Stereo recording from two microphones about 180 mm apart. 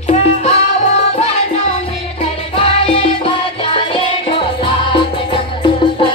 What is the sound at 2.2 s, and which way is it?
Music, 35° left (ahead or behind).